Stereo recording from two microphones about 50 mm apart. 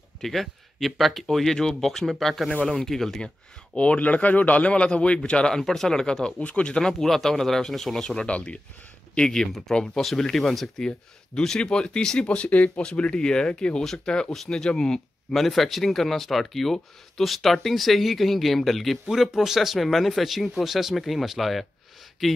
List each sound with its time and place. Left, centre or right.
0.2 s speech: centre
3.7 s a man's voice: left
5.6 s speech: centre
6.4 s a man's voice: left
6.8 s speech: centre
12.4 s speech: left
15.3 s speech: centre